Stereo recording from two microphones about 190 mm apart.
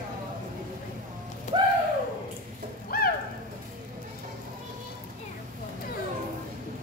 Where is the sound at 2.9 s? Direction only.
50° left (ahead or behind).